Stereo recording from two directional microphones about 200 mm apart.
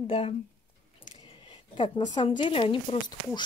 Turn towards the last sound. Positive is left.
turn(degrees=25)  # may be behind; listen again after turning